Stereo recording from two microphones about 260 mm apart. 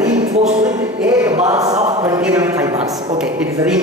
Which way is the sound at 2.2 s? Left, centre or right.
Centre.